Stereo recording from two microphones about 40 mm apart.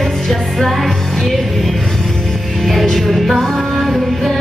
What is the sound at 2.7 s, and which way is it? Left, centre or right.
Music, centre.